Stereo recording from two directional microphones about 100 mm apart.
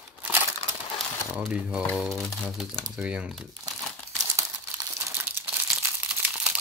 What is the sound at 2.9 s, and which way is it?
Speech, 10° right (ahead or behind).